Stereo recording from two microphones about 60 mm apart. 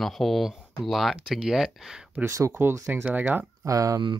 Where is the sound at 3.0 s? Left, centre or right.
Right.